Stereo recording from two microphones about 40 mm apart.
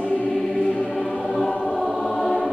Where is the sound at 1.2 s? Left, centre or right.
Centre.